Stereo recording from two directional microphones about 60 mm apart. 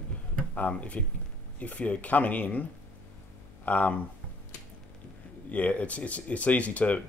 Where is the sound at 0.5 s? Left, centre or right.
Left.